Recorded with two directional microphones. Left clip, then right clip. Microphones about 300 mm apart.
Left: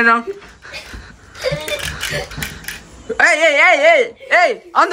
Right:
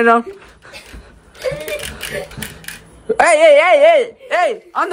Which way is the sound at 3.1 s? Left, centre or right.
Centre.